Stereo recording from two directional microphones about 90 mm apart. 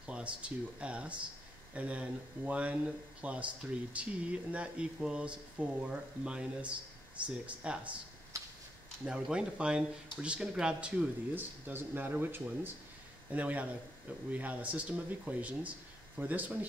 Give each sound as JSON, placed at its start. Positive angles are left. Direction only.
{"t": 0.0, "sound": "speech", "side_deg": -15}
{"t": 9.0, "sound": "speech", "side_deg": -10}